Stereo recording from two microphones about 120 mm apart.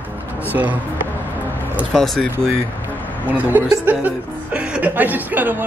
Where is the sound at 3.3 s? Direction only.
15° right (ahead or behind).